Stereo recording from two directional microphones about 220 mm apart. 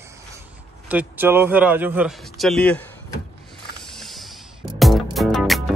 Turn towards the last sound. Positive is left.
turn(degrees=0)  # may be behind; listen again after turning